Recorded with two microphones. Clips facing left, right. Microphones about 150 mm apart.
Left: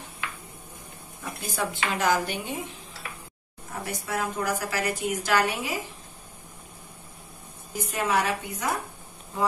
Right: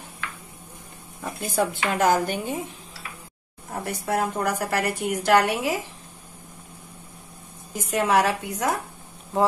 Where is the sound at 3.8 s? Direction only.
55° right (ahead or behind); by 5.8 s 75° right (ahead or behind).